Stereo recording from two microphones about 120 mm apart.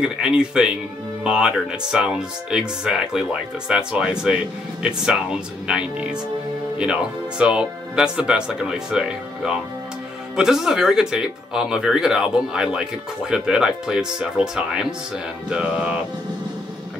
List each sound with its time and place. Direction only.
0.4 s speech: 5° right (ahead or behind)